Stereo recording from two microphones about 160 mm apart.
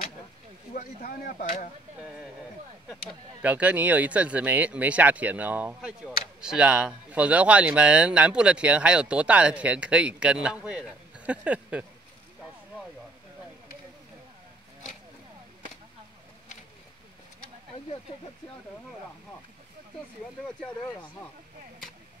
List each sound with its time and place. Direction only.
0.7 s speech: 65° left (ahead or behind)
2.0 s a sound: 5° right (ahead or behind)
2.9 s speech: 5° right (ahead or behind)